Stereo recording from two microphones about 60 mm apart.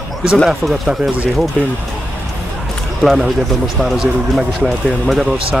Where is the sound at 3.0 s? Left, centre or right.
Centre.